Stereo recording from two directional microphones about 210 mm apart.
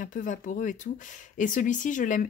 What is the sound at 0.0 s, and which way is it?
Speech, 40° left (ahead or behind).